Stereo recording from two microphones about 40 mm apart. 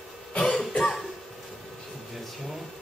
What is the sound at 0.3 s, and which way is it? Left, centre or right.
Cough, left.